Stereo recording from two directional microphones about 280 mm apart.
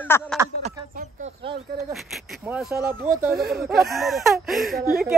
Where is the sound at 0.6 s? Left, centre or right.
Right.